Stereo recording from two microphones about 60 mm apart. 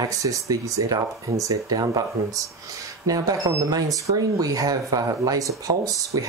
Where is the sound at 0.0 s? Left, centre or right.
Right.